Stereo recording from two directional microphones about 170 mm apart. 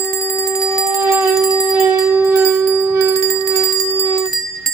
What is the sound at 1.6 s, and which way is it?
Bell, 10° right (ahead or behind).